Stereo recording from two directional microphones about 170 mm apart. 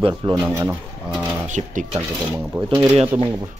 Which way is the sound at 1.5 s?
45° right (ahead or behind).